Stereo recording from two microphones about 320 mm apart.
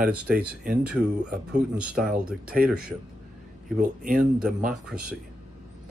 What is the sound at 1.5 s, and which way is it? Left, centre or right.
Speech, centre.